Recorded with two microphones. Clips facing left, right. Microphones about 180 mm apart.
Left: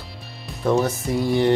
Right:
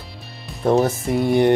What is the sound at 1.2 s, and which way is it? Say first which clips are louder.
Music: right 3 dB; 55° right (ahead or behind).